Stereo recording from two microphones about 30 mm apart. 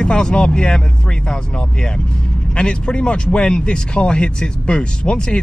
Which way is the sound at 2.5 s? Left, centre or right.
Left.